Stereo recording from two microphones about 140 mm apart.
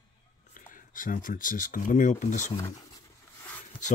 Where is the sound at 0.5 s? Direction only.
75° left (ahead or behind).